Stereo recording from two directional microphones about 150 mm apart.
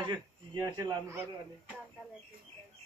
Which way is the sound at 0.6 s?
20° right (ahead or behind).